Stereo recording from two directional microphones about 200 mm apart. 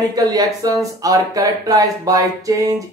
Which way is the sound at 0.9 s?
15° right (ahead or behind).